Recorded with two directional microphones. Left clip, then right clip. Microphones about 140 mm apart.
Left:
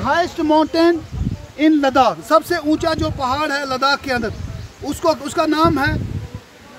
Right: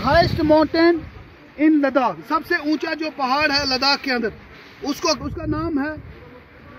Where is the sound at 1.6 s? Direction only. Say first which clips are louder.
Left 3 dB; 50° left (ahead or behind).